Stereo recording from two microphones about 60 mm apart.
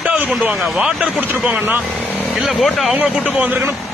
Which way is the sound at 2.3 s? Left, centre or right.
Centre.